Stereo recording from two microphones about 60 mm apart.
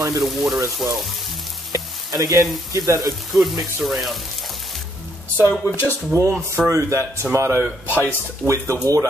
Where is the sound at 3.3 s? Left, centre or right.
Right.